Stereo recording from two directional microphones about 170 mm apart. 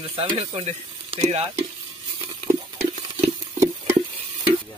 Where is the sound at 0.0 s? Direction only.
35° right (ahead or behind).